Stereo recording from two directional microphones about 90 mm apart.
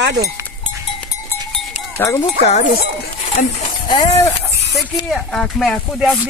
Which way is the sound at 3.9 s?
45° left (ahead or behind).